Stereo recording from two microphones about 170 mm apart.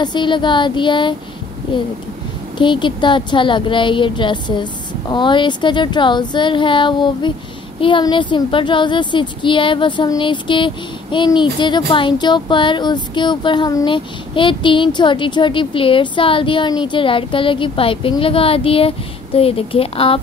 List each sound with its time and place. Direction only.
0.0 s speech: 25° left (ahead or behind)